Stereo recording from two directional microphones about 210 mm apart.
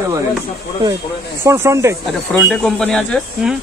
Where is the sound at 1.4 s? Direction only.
15° right (ahead or behind).